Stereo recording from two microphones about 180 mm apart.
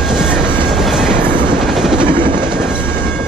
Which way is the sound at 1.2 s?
25° right (ahead or behind).